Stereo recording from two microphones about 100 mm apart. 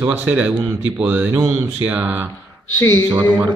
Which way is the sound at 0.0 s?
15° right (ahead or behind).